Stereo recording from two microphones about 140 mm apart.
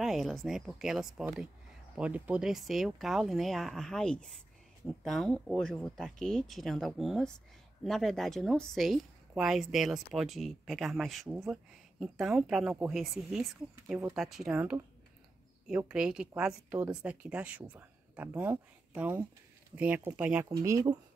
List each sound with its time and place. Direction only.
0.0 s a woman's voice: centre (ahead or behind)
20.4 s speech: 25° right (ahead or behind)